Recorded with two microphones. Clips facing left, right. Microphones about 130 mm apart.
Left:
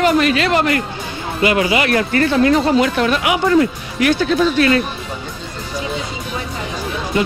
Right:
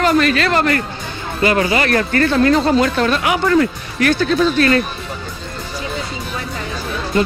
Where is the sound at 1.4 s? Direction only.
40° right (ahead or behind).